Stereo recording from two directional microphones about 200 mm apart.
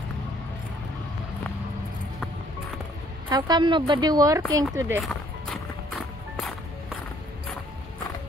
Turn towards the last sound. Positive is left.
turn(degrees=0)  # may be behind; listen again after turning